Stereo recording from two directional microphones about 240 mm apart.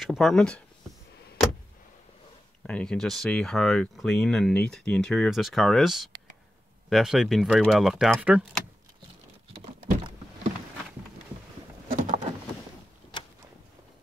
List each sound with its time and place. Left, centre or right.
0.0 s speech: centre
2.6 s speech: centre
11.9 s a sound: right